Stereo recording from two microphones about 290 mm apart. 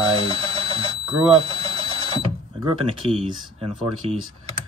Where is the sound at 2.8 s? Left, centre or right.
Centre.